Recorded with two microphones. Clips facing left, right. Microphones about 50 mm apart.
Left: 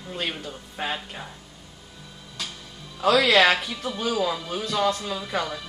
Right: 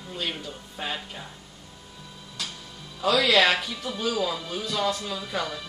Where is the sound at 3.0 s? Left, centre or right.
Left.